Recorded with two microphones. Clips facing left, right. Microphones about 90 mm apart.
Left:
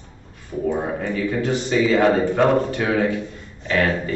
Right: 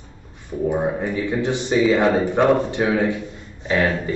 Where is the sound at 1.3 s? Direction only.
20° right (ahead or behind).